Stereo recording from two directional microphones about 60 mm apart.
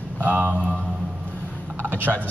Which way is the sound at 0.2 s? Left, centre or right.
Right.